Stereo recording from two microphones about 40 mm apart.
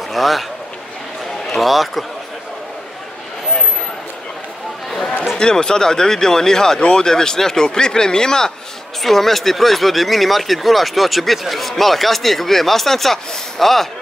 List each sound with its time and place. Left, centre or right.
0.1 s a man's voice: centre
1.5 s speech: centre
5.4 s speech: centre
9.0 s speech: centre